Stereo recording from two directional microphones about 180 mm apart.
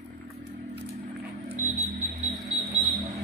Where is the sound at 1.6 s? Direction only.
40° right (ahead or behind).